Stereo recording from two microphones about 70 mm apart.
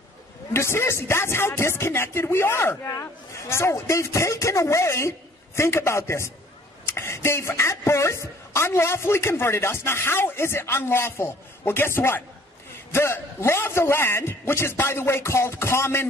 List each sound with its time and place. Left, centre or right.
0.5 s a woman's voice: left